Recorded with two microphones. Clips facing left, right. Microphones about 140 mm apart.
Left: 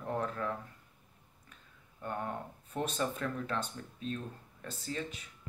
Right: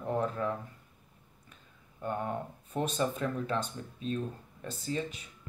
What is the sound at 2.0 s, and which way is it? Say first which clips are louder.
Speech: right 4 dB; 15° right (ahead or behind).